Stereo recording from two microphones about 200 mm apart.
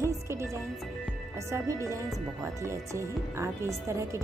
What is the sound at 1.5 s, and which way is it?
Speech, 15° right (ahead or behind).